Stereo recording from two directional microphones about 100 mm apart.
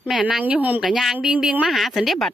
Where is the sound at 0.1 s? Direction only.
5° right (ahead or behind).